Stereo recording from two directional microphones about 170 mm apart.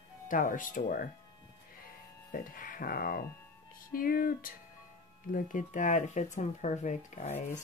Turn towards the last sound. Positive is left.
turn(degrees=45)  # may be behind; listen again after turning